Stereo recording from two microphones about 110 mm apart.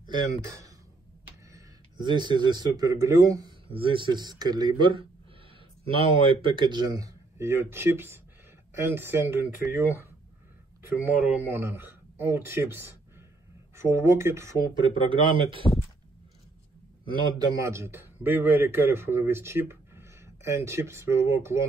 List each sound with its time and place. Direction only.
0.0 s speech: 35° right (ahead or behind)
2.0 s a man's voice: 45° right (ahead or behind)
3.7 s a man's voice: 50° right (ahead or behind)
5.9 s a man's voice: 50° right (ahead or behind); by 9.9 s 20° right (ahead or behind)
11.0 s speech: 15° right (ahead or behind)
14.7 s a man's voice: 50° right (ahead or behind)
17.6 s a man's voice: 25° right (ahead or behind)